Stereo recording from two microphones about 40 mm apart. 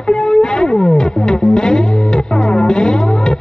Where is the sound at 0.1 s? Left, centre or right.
Centre.